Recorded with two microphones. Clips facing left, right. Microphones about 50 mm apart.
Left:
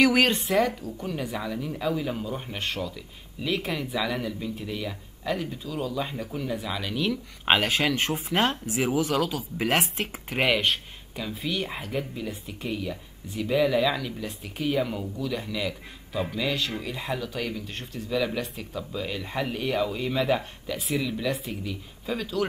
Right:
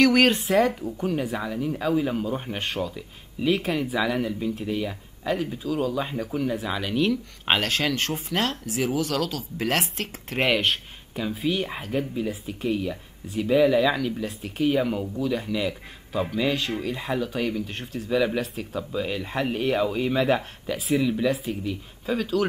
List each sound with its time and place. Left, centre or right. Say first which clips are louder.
0.0 s speech: right 2 dB; centre
7.1 s speech: even; centre
7.6 s speech: even; centre
10.4 s speech: right 1 dB; centre
11.2 s speech: right 4 dB; centre
12.7 s speech: right 4 dB; centre